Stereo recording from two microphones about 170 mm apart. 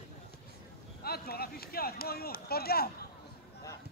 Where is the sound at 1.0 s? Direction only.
65° left (ahead or behind).